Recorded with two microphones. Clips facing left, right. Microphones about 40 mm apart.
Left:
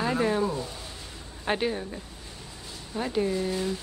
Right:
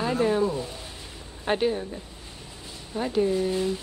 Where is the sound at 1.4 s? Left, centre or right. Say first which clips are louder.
Right 3 dB; centre.